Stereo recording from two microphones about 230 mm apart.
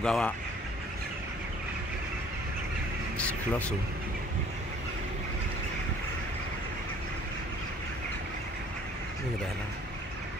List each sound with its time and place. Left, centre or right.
0.0 s speech: centre
3.2 s speech: centre